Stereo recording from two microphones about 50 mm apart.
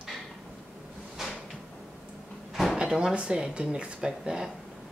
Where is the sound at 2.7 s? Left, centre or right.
Centre.